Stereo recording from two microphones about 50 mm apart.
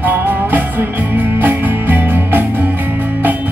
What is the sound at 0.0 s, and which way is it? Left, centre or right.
Music, right.